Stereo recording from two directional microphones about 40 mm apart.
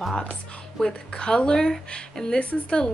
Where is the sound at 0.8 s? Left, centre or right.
Centre.